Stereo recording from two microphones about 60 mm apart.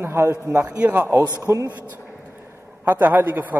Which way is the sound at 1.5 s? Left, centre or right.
Right.